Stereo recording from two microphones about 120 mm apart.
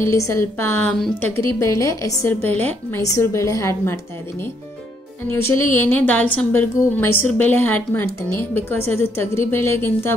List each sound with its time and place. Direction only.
0.0 s a woman's voice: 25° left (ahead or behind)
5.3 s a woman's voice: 20° left (ahead or behind)